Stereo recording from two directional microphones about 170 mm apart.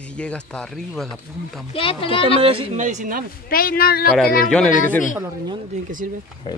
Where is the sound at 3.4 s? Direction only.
60° left (ahead or behind).